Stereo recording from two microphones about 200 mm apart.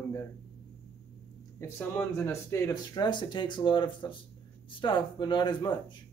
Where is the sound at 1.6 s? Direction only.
10° left (ahead or behind).